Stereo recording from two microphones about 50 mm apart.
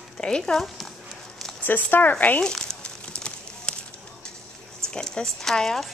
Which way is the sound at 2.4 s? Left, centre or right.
Centre.